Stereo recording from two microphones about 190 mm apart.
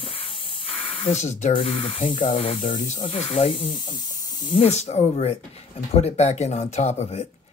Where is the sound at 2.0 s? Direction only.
40° left (ahead or behind).